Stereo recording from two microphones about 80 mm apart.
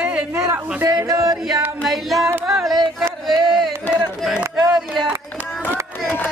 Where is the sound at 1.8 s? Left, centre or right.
Centre.